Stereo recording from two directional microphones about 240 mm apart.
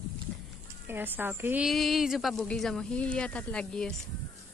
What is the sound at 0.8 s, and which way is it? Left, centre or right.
A woman's voice, centre.